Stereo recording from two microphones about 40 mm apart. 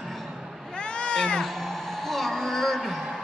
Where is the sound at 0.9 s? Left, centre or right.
Left.